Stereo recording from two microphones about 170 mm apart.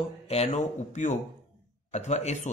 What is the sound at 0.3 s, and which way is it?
Speech, 40° left (ahead or behind).